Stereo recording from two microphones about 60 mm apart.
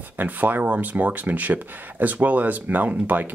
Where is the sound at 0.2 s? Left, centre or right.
Right.